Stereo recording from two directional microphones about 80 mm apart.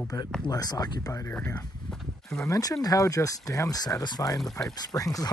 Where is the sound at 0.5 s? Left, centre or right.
Left.